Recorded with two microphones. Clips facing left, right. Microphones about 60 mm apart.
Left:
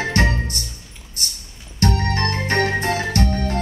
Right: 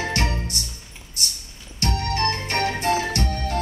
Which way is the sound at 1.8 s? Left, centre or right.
Left.